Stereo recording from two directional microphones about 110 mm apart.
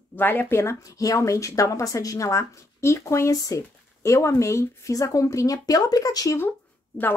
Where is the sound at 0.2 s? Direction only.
20° left (ahead or behind); by 6.3 s 35° left (ahead or behind).